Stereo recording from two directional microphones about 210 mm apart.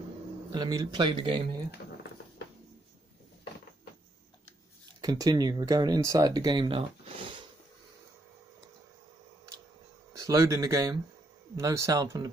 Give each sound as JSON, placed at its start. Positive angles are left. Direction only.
{"t": 0.5, "sound": "speech", "side_deg": -20}
{"t": 5.0, "sound": "speech", "side_deg": -20}
{"t": 10.1, "sound": "speech", "side_deg": -15}